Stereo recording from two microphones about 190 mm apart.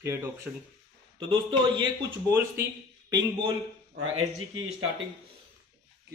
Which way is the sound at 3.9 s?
90° right.